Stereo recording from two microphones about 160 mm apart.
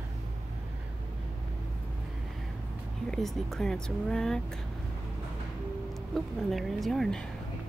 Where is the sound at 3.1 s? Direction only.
Centre (ahead or behind).